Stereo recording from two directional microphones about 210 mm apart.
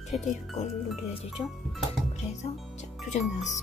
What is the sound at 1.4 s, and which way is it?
Speech, 25° left (ahead or behind).